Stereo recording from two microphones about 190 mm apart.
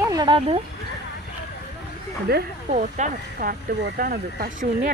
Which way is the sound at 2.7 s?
40° right (ahead or behind).